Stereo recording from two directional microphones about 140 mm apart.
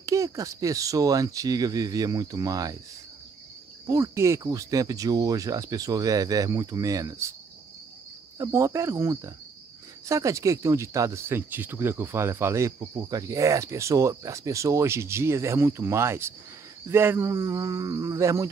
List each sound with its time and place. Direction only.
0.0 s speech: 20° right (ahead or behind)
3.8 s speech: 20° right (ahead or behind)
8.4 s speech: 20° right (ahead or behind)